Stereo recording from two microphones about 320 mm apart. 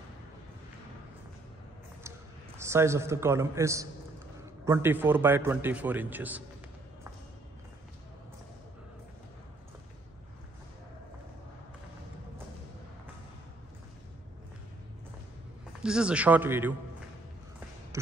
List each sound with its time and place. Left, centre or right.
2.0 s a man's voice: centre
15.8 s a man's voice: centre